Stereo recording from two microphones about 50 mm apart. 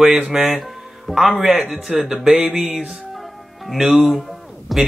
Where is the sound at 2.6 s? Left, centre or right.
Centre.